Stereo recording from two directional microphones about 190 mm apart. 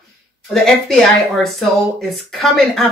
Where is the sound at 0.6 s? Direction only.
Centre (ahead or behind).